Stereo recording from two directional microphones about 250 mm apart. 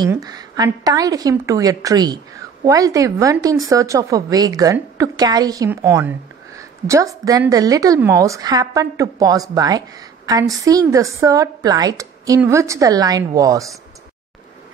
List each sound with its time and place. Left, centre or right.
0.0 s a woman's voice: centre